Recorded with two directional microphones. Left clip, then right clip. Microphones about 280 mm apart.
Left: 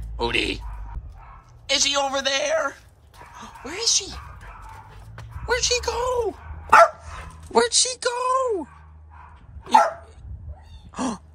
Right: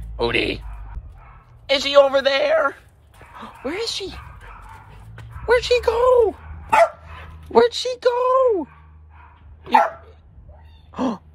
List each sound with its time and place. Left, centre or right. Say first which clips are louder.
0.2 s a man's voice: right 3 dB; centre
1.7 s a man's voice: right 7 dB; centre
5.5 s a man's voice: right 6 dB; centre
7.5 s a man's voice: right 3 dB; centre
9.7 s dog: right 1 dB; centre
10.9 s a sound: right 4 dB; centre